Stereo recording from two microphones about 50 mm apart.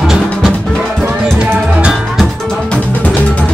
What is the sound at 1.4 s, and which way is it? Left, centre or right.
Music, right.